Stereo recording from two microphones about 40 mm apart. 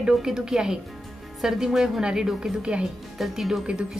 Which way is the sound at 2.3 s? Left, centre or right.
Centre.